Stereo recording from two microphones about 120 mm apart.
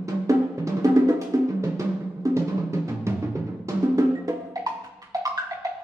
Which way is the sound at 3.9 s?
25° right (ahead or behind).